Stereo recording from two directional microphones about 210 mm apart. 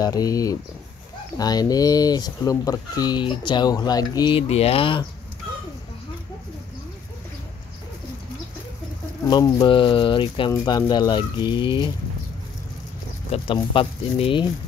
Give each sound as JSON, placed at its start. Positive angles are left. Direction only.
{"t": 0.0, "sound": "speech", "side_deg": 15}
{"t": 9.3, "sound": "speech", "side_deg": 20}
{"t": 13.3, "sound": "speech", "side_deg": 25}